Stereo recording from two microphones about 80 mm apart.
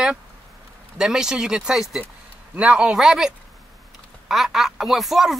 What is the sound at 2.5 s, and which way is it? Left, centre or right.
A man's voice, centre.